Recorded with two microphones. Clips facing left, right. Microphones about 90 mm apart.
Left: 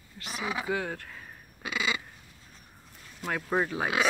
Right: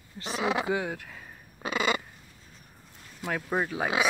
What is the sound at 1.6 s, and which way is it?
Crow, 45° right (ahead or behind).